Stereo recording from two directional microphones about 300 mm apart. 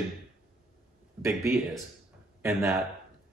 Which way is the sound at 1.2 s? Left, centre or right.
Centre.